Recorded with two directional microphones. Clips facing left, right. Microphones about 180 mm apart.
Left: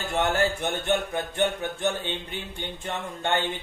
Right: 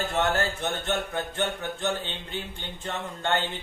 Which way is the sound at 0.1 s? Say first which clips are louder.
Left 5 dB; 15° left (ahead or behind).